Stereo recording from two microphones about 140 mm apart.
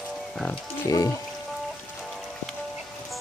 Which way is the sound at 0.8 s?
25° left (ahead or behind).